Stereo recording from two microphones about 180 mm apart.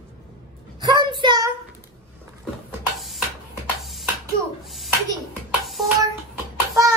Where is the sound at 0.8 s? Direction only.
25° right (ahead or behind).